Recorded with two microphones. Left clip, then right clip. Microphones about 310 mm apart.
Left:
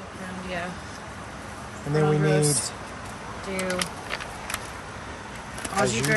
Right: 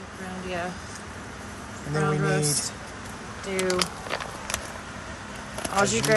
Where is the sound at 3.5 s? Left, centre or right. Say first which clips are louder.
Right 3 dB; right.